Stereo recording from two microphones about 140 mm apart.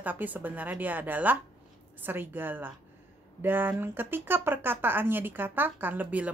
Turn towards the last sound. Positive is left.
turn(degrees=-10)  # may be behind; listen again after turning